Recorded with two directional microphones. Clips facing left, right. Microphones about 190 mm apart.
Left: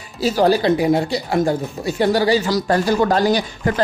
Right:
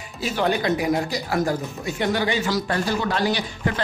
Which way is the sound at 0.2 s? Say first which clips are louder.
Left 7 dB; 35° left (ahead or behind).